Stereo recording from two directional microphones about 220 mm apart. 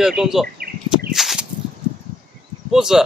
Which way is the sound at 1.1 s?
Centre (ahead or behind).